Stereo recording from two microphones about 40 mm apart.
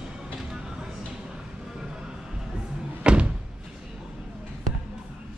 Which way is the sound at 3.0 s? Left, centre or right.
Right.